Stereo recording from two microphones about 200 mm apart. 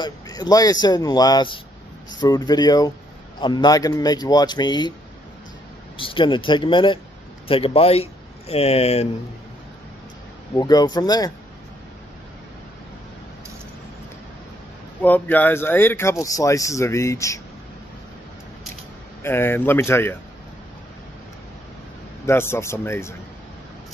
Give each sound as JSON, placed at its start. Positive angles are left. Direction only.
{"t": 0.0, "sound": "speech", "side_deg": 20}
{"t": 5.9, "sound": "speech", "side_deg": 25}
{"t": 10.5, "sound": "speech", "side_deg": 20}
{"t": 15.0, "sound": "speech", "side_deg": 10}
{"t": 19.2, "sound": "speech", "side_deg": 10}
{"t": 22.2, "sound": "speech", "side_deg": 10}